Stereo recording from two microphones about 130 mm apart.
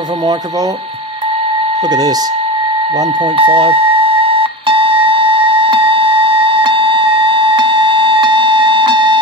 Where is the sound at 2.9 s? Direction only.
35° right (ahead or behind).